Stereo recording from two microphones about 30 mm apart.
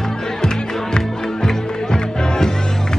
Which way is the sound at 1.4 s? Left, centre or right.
Left.